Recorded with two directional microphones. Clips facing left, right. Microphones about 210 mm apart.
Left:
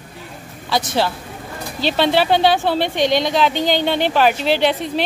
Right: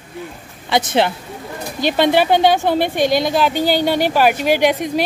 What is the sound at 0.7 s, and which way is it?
A woman's voice, 20° right (ahead or behind).